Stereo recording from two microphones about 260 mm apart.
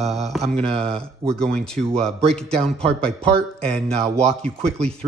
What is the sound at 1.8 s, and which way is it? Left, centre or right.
Mantra, right.